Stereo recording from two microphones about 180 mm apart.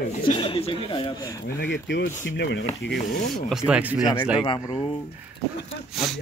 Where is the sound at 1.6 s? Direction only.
70° left (ahead or behind).